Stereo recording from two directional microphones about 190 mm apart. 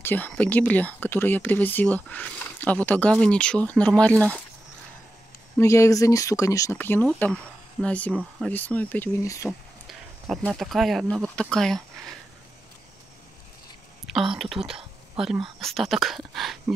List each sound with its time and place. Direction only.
0.0 s speech: 10° left (ahead or behind)
5.6 s speech: 15° left (ahead or behind)
10.2 s speech: centre (ahead or behind)
14.3 s speech: centre (ahead or behind)